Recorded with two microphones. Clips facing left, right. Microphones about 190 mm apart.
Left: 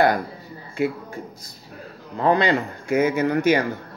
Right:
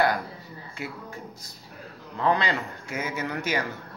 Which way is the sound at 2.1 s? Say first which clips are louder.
Left 6 dB; 50° left (ahead or behind).